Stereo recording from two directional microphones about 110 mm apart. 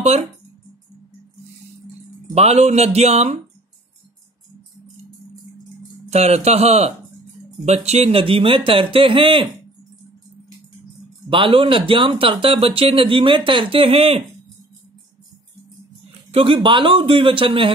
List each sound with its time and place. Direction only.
2.3 s speech: 80° right
6.0 s a man's voice: 80° right; by 9.5 s 50° right (ahead or behind)
11.2 s speech: 50° right (ahead or behind)
16.3 s a sound: 60° right (ahead or behind)
16.5 s speech: 50° right (ahead or behind)